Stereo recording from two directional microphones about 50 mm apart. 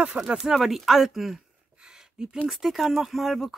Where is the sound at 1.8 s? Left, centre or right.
Centre.